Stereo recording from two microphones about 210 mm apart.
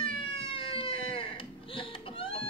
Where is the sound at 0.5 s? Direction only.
25° left (ahead or behind).